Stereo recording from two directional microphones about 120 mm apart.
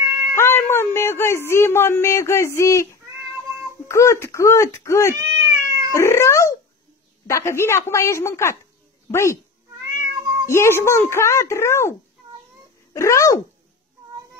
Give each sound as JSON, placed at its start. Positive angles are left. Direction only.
{"t": 0.0, "sound": "cat", "side_deg": -20}
{"t": 0.4, "sound": "speech", "side_deg": 20}
{"t": 5.4, "sound": "cat", "side_deg": -30}
{"t": 5.9, "sound": "speech", "side_deg": 20}
{"t": 10.5, "sound": "speech", "side_deg": 20}
{"t": 12.9, "sound": "speech", "side_deg": 25}